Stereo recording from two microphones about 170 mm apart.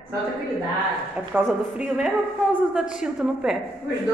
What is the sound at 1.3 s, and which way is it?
Speech, 10° right (ahead or behind).